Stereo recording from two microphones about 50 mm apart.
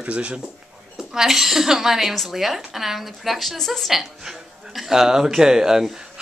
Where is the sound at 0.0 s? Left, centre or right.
Right.